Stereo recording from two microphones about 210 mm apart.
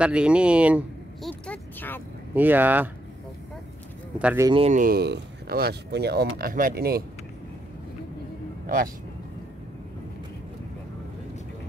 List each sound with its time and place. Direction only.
0.0 s speech: 5° right (ahead or behind)
1.5 s a sound: 10° left (ahead or behind)
2.3 s speech: 10° right (ahead or behind)
4.2 s speech: 5° right (ahead or behind)
4.5 s speech: 25° right (ahead or behind)
4.7 s speech: 45° right (ahead or behind)
8.6 s speech: 40° right (ahead or behind)